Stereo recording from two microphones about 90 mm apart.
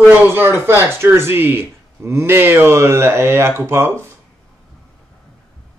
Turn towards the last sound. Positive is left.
turn(degrees=-25)  # may be behind; listen again after turning